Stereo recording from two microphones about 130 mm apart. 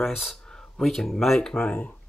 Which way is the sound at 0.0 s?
Centre (ahead or behind).